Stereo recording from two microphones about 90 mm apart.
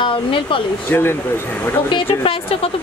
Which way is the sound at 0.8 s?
25° left (ahead or behind).